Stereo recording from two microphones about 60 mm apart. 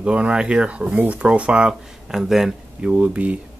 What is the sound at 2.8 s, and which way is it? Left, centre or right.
Speech, centre.